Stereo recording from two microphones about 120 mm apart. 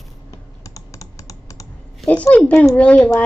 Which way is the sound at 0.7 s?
25° left (ahead or behind).